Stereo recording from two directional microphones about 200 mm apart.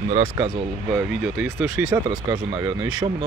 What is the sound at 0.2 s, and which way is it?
Speech, 20° right (ahead or behind).